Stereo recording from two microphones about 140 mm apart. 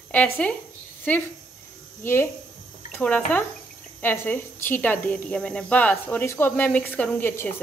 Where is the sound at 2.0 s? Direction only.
20° left (ahead or behind).